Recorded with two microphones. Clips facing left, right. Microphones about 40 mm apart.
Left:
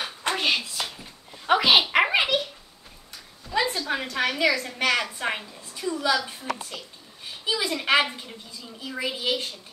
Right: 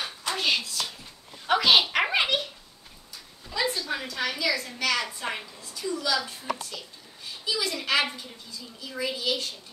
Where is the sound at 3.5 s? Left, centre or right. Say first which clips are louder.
Left 4 dB; centre.